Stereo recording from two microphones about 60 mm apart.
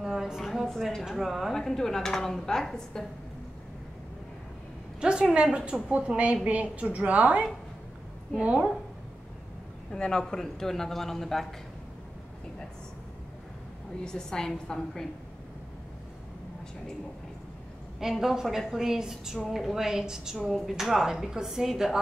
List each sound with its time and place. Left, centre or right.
0.0 s a sound: centre
1.6 s speech: centre
5.0 s a woman's voice: centre
9.9 s speech: centre
14.0 s speech: centre
18.0 s a woman's voice: centre